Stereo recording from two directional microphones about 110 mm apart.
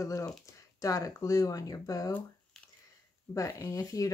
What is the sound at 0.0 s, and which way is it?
Speech, 30° left (ahead or behind).